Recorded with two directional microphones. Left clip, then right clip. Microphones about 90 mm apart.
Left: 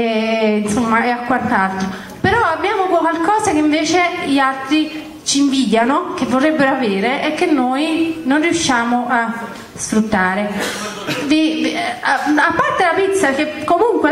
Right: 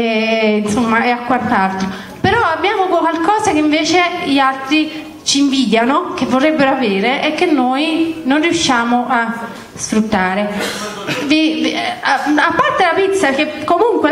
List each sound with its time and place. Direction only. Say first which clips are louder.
0.0 s a woman's voice: right 2 dB; 20° right (ahead or behind)